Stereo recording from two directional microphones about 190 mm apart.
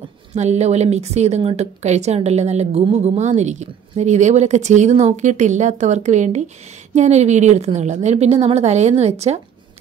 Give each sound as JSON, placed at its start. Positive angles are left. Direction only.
{"t": 0.3, "sound": "a woman's voice", "side_deg": -35}